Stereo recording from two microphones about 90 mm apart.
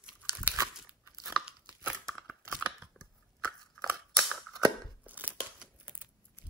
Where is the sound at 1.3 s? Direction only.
5° right (ahead or behind).